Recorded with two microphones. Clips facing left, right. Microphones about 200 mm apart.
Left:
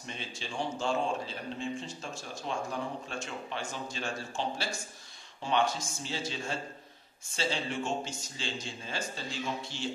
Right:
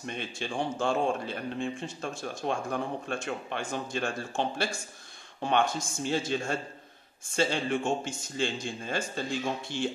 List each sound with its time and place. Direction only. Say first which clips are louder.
0.0 s a man's voice: right 6 dB; 55° right (ahead or behind)